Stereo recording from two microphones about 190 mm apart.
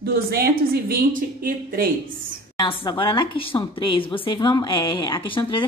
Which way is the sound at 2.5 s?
25° left (ahead or behind).